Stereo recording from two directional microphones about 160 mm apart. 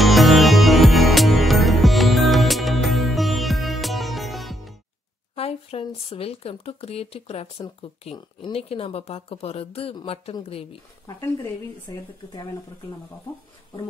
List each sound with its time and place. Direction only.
0.0 s music: centre (ahead or behind)
5.3 s speech: 40° left (ahead or behind)